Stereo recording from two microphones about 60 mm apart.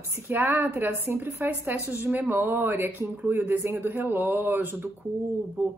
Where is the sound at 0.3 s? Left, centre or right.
Right.